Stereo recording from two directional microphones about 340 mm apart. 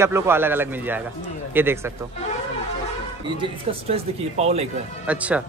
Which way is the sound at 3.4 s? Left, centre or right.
Centre.